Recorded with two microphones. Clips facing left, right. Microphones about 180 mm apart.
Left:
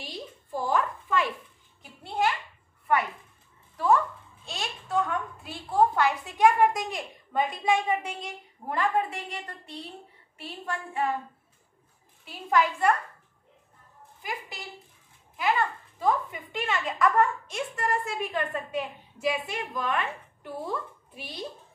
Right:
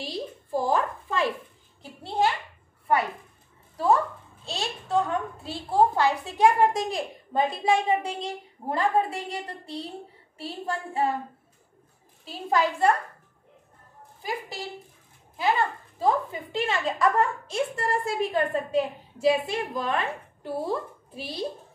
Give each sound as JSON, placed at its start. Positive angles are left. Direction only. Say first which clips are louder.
{"t": 0.0, "sound": "a sound", "louder": "right 6 dB", "side_deg": -35}
{"t": 4.5, "sound": "a woman's voice", "louder": "right 4 dB", "side_deg": -30}
{"t": 12.3, "sound": "a child's voice", "louder": "even", "side_deg": -30}
{"t": 14.2, "sound": "a child's voice", "louder": "right 5 dB", "side_deg": -35}